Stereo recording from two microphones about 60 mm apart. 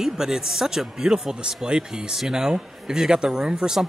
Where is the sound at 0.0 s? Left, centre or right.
Centre.